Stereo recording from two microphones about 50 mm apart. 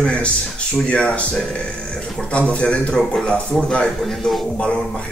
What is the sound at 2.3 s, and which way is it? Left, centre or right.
A man's voice, left.